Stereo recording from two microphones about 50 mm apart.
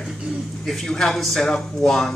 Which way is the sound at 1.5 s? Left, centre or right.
Centre.